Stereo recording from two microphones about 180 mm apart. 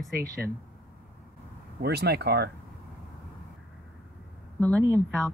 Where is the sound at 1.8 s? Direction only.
65° right (ahead or behind).